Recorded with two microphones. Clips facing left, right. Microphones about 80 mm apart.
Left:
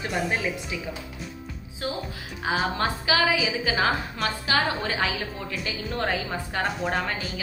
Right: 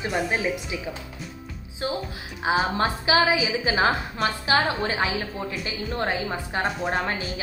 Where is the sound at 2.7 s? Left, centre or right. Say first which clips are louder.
Right 3 dB; right.